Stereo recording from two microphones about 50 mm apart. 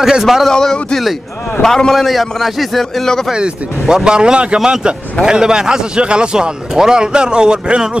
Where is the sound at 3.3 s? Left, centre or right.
Centre.